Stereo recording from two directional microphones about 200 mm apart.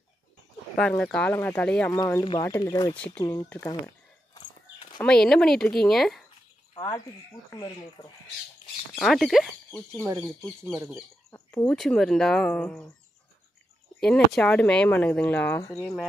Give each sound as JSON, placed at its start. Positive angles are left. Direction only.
{"t": 0.7, "sound": "speech", "side_deg": 5}
{"t": 3.2, "sound": "a sound", "side_deg": 10}
{"t": 5.0, "sound": "speech", "side_deg": 5}
{"t": 7.5, "sound": "speech", "side_deg": 20}
{"t": 8.9, "sound": "speech", "side_deg": 0}
{"t": 10.0, "sound": "speech", "side_deg": -15}
{"t": 11.2, "sound": "bird", "side_deg": 15}
{"t": 11.6, "sound": "speech", "side_deg": 0}
{"t": 14.0, "sound": "speech", "side_deg": 5}